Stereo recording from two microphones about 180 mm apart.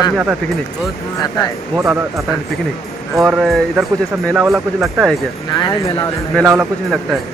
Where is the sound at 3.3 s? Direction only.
Centre (ahead or behind).